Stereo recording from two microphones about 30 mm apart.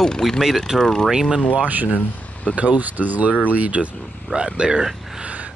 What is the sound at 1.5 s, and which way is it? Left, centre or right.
Speech, right.